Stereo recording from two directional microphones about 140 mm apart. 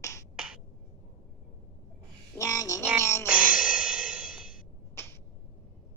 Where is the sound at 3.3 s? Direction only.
10° right (ahead or behind).